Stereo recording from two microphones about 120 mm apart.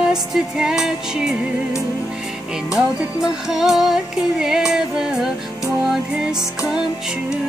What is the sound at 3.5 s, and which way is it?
Music, 5° right (ahead or behind).